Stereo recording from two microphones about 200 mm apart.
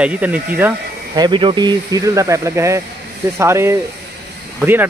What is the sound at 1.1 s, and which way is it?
Speech, 20° right (ahead or behind).